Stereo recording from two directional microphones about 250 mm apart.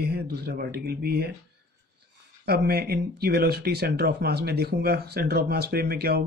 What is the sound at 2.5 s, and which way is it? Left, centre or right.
Speech, right.